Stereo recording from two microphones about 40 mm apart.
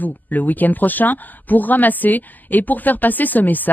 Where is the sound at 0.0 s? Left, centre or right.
Left.